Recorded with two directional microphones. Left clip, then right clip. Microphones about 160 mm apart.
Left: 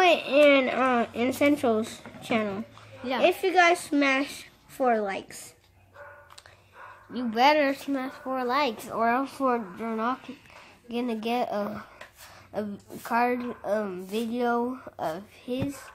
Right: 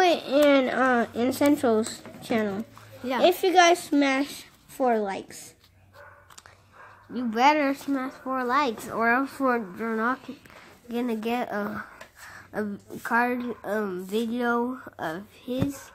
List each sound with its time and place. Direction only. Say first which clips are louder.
0.0 s a sound: left 1 dB; centre (ahead or behind)
2.0 s a woman's voice: right 1 dB; centre (ahead or behind)
3.3 s a child's voice: right 2 dB; 30° right (ahead or behind)
3.9 s speech: right 1 dB; centre (ahead or behind)
7.2 s speech: even; centre (ahead or behind)